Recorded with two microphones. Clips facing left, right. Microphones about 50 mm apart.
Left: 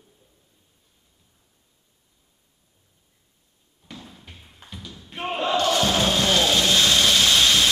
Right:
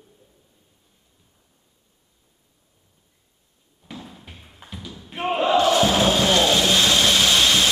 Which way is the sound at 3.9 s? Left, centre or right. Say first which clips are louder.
Right 3 dB; centre.